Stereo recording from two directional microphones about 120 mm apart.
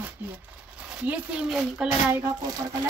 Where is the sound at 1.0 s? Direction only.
10° right (ahead or behind).